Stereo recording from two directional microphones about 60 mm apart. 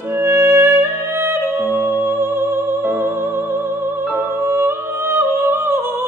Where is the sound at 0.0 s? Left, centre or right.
Right.